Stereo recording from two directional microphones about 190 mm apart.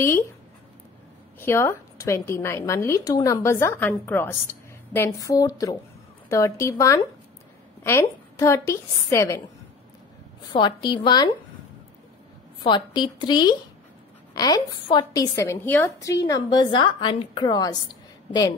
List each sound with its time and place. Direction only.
1.4 s a woman's voice: 15° left (ahead or behind)
10.5 s a woman's voice: 25° left (ahead or behind)
12.6 s a woman's voice: 25° left (ahead or behind)